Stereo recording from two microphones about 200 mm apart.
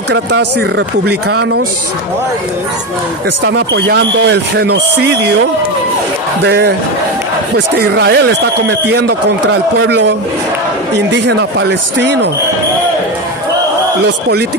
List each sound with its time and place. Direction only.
0.1 s a man's voice: 60° right (ahead or behind)
3.4 s a man's voice: 60° right (ahead or behind)
6.4 s a man's voice: 55° right (ahead or behind)
12.0 s a man's voice: 60° right (ahead or behind)